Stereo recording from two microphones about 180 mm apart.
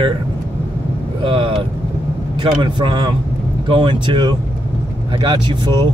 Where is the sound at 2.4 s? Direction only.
25° right (ahead or behind).